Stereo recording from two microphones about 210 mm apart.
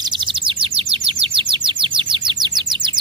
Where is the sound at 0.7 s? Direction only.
25° right (ahead or behind).